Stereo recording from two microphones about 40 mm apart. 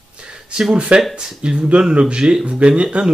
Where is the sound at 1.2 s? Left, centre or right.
Right.